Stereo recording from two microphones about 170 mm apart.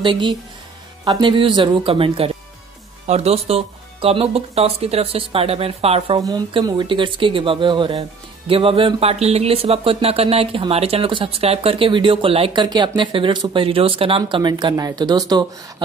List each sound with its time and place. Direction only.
0.0 s speech: 30° right (ahead or behind)